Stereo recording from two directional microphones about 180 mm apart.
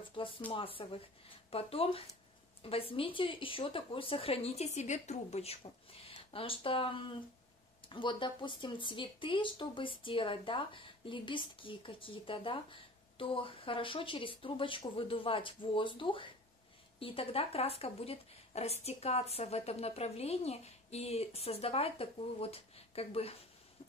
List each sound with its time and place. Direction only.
0.2 s speech: 30° left (ahead or behind)